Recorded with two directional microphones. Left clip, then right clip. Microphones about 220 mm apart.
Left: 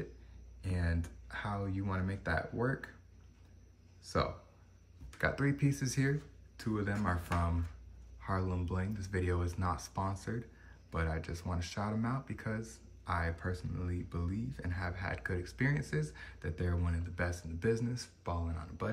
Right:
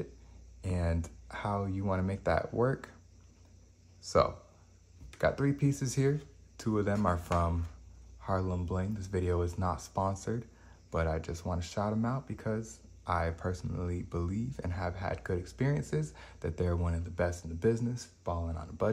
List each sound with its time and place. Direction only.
0.6 s speech: 30° right (ahead or behind)
5.2 s speech: 20° right (ahead or behind)
8.2 s speech: 20° right (ahead or behind)